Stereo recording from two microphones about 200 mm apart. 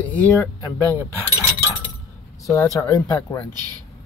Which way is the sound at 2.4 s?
15° left (ahead or behind).